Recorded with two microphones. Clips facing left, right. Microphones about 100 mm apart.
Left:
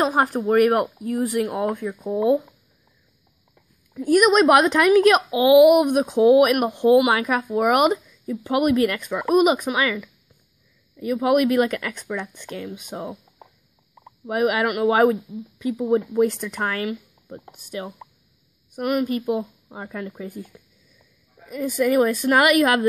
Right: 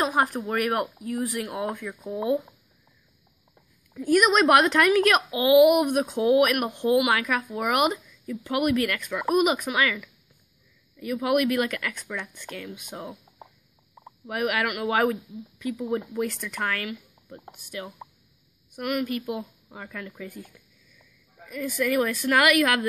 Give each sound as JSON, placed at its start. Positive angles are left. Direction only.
{"t": 0.0, "sound": "speech", "side_deg": 30}
{"t": 4.0, "sound": "speech", "side_deg": 15}
{"t": 14.2, "sound": "speech", "side_deg": 30}
{"t": 21.7, "sound": "speech", "side_deg": 25}